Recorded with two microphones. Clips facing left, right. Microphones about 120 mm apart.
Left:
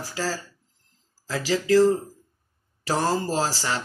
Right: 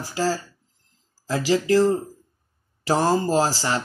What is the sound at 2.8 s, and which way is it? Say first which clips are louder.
Speech: right 4 dB; 25° right (ahead or behind).